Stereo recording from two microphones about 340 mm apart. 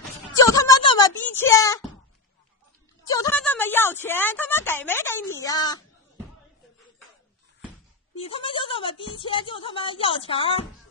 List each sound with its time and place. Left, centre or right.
0.4 s a sound: centre
3.1 s a woman's voice: centre
8.2 s speech: centre